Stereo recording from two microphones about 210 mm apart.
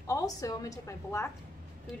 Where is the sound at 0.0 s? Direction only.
15° left (ahead or behind).